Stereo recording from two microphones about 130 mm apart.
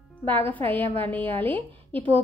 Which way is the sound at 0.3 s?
15° left (ahead or behind).